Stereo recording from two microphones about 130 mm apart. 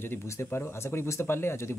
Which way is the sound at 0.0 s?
20° left (ahead or behind).